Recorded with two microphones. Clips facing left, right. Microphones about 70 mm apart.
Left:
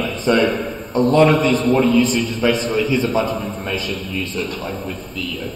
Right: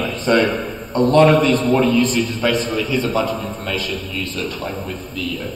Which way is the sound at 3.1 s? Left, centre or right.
Centre.